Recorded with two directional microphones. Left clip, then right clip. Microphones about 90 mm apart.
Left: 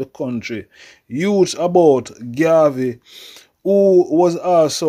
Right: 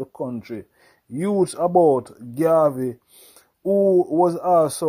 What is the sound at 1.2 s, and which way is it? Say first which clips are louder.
Speech: left 5 dB; 10° right (ahead or behind).